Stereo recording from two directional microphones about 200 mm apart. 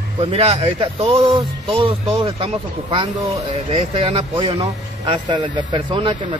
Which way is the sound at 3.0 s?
15° right (ahead or behind).